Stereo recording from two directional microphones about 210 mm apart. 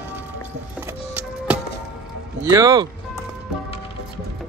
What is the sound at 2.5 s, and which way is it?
Speech, 15° right (ahead or behind).